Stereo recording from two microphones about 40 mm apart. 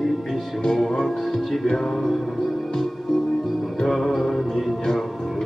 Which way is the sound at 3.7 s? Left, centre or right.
Centre.